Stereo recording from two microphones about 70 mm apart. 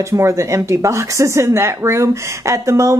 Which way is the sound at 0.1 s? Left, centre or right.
Right.